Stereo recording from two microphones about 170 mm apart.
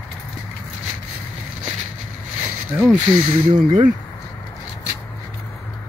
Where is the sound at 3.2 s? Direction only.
40° right (ahead or behind).